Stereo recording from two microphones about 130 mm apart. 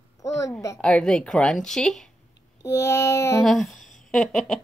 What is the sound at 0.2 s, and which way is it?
Speech, 25° left (ahead or behind).